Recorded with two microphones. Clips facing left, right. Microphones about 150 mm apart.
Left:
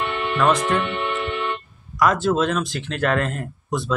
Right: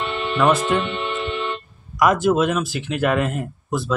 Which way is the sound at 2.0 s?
15° right (ahead or behind).